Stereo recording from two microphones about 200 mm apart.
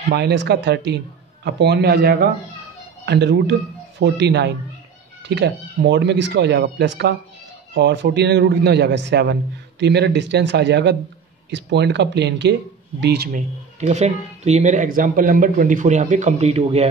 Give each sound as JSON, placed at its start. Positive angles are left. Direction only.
{"t": 0.1, "sound": "a man's voice", "side_deg": -55}
{"t": 13.7, "sound": "speech", "side_deg": -35}